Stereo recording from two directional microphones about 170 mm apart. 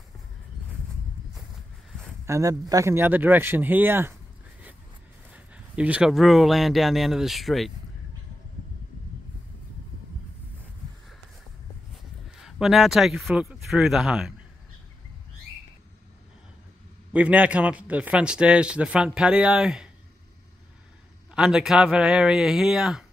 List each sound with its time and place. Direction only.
2.2 s a man's voice: 20° right (ahead or behind)
5.3 s speech: 10° right (ahead or behind)
12.4 s speech: centre (ahead or behind)
17.1 s a man's voice: 10° right (ahead or behind)
21.4 s speech: 5° right (ahead or behind)